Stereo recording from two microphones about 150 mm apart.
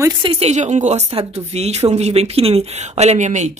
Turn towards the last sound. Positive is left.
turn(degrees=-50)  # may be behind; listen again after turning